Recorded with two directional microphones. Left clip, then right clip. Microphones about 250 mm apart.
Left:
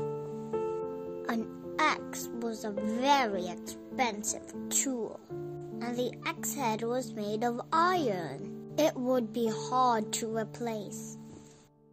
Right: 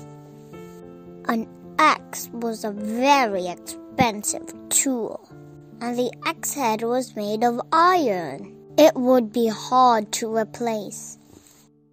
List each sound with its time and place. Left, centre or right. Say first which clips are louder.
1.2 s a child's voice: right 13 dB; right